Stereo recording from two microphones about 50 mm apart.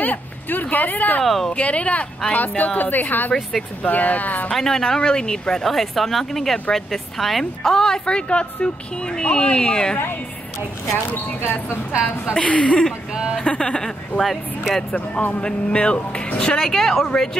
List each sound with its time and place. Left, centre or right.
0.0 s speech: left
1.2 s speech: centre
1.5 s a woman's voice: left
4.6 s a woman's voice: centre
11.4 s speech: left
12.4 s a woman's voice: left
13.1 s speech: centre
13.4 s a woman's voice: left
14.2 s speech: centre
15.0 s a woman's voice: left
15.4 s a woman's voice: left